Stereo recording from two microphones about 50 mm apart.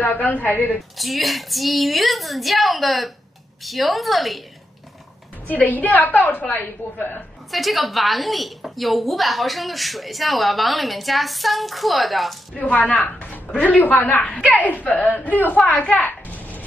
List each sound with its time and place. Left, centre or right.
0.0 s a woman's voice: left
0.7 s a woman's voice: centre
5.5 s a woman's voice: left
7.5 s a woman's voice: centre
12.5 s a woman's voice: left